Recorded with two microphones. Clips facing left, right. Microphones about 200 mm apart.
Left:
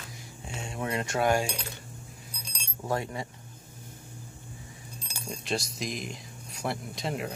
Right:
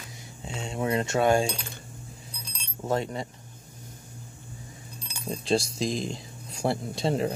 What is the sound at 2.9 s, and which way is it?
Speech, 25° right (ahead or behind).